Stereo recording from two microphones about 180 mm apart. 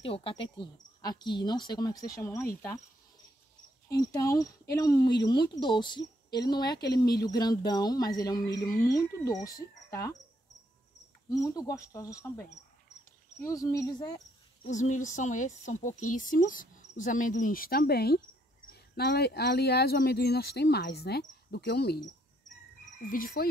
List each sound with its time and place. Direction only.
0.0 s speech: 30° left (ahead or behind); by 2.8 s 15° left (ahead or behind)
3.9 s speech: 20° left (ahead or behind)
11.3 s speech: 20° left (ahead or behind)
14.7 s speech: 45° left (ahead or behind); by 22.0 s 60° left (ahead or behind)
23.0 s speech: 50° left (ahead or behind)